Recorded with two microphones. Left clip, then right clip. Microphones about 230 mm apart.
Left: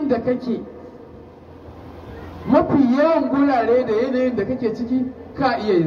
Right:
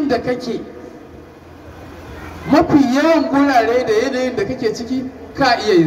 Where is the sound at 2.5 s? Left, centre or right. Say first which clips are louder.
Right 3 dB; right.